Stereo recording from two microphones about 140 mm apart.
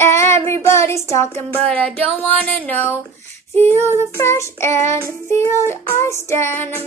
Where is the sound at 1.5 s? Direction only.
10° left (ahead or behind).